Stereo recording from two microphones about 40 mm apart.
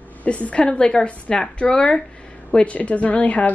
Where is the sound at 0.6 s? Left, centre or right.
Left.